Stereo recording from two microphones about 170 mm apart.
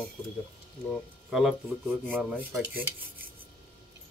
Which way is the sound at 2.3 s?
10° right (ahead or behind).